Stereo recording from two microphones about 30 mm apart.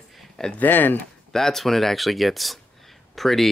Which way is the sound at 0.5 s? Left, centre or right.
Left.